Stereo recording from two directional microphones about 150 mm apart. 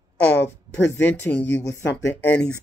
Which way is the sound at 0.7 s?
10° left (ahead or behind).